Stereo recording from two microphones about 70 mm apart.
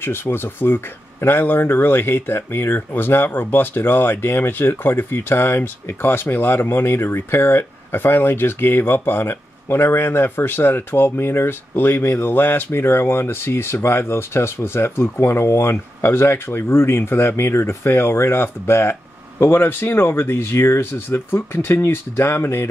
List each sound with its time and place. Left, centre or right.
0.0 s speech: left